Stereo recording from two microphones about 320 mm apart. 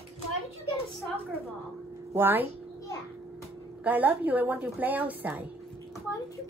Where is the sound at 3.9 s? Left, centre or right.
Centre.